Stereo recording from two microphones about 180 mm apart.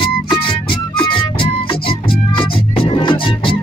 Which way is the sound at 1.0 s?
30° left (ahead or behind).